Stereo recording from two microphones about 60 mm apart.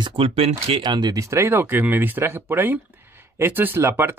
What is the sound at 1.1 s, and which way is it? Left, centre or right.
Speech, right.